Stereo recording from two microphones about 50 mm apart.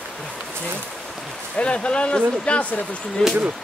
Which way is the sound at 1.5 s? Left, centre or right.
Left.